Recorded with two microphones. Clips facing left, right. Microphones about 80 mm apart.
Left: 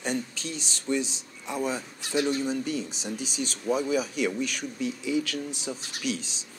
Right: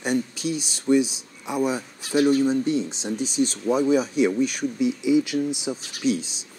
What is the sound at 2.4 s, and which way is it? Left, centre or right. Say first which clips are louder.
Speech: right 7 dB; right.